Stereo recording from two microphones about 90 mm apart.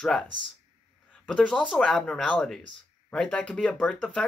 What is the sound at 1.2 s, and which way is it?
Speech, 10° left (ahead or behind).